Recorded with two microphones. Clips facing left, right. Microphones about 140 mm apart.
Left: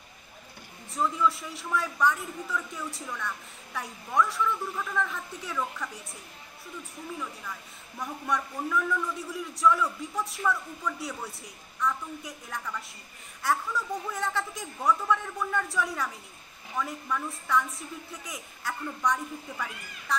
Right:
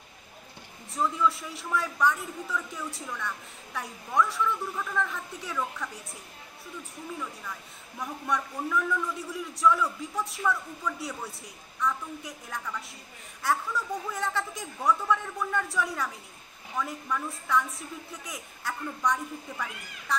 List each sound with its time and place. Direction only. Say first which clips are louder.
0.9 s a woman's voice: even; centre (ahead or behind)
7.1 s a woman's voice: even; centre (ahead or behind)